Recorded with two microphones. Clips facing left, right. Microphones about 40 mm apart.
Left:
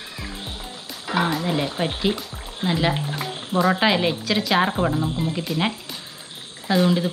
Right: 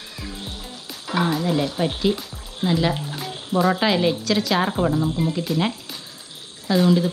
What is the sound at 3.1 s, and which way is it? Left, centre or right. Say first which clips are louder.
Music: even; centre.